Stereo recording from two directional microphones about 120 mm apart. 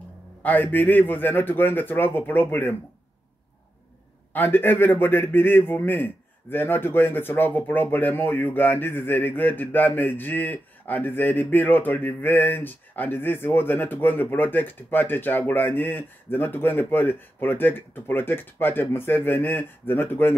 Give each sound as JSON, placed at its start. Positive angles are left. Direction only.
{"t": 0.4, "sound": "a man's voice", "side_deg": 15}
{"t": 4.3, "sound": "a man's voice", "side_deg": 15}